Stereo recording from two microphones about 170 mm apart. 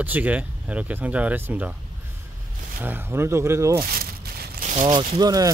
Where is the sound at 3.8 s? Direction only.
65° right (ahead or behind).